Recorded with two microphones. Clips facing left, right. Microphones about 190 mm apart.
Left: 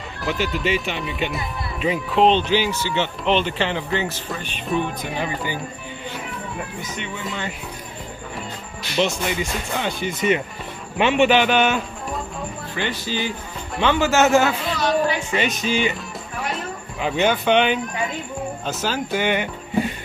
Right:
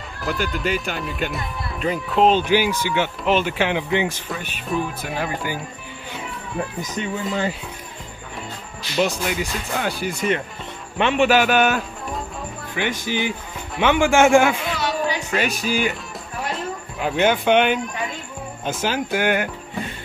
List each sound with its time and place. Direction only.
0.2 s speech: centre (ahead or behind)
8.9 s speech: centre (ahead or behind)
13.0 s a man's voice: 15° right (ahead or behind)
16.5 s a sound: centre (ahead or behind)
18.7 s speech: 10° right (ahead or behind)